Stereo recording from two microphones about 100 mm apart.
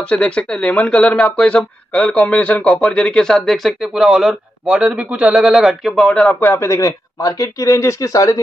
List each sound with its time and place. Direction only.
0.1 s speech: 10° left (ahead or behind)
6.0 s speech: 10° left (ahead or behind)
6.5 s speech: 30° left (ahead or behind)